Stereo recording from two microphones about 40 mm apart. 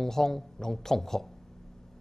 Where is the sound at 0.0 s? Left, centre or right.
Centre.